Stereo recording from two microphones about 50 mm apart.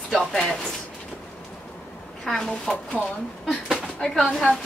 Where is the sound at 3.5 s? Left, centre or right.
Centre.